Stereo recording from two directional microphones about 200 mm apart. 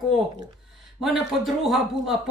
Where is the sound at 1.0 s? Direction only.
Centre (ahead or behind).